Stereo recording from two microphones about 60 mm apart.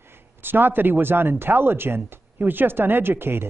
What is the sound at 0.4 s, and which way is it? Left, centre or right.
A man's voice, right.